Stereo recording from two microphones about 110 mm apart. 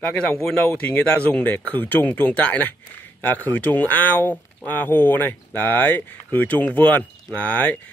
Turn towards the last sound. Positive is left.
turn(degrees=15)  # may be behind; listen again after turning